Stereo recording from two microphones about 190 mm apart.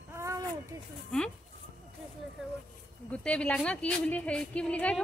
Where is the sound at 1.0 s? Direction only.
5° left (ahead or behind).